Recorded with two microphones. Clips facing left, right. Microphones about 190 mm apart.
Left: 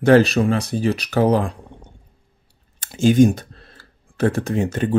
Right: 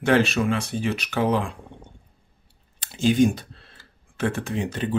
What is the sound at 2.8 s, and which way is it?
Speech, 45° left (ahead or behind).